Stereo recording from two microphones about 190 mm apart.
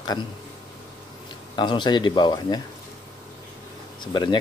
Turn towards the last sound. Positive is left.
turn(degrees=25)  # may be behind; listen again after turning